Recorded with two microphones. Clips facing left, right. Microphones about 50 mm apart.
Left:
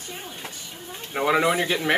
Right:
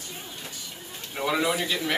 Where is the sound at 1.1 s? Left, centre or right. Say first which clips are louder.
Left 5 dB; left.